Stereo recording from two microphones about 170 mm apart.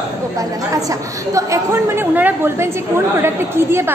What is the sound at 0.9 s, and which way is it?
A woman's voice, 20° right (ahead or behind).